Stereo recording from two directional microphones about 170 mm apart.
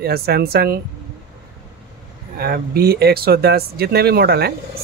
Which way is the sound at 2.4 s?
65° right (ahead or behind).